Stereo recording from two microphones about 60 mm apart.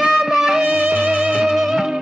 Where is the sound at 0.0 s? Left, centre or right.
Centre.